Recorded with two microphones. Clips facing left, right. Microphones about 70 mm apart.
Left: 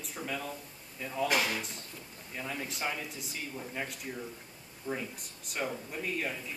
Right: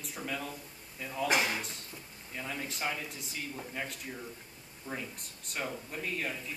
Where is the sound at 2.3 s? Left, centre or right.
Centre.